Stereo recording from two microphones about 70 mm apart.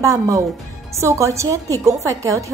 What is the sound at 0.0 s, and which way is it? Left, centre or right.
A woman's voice, right.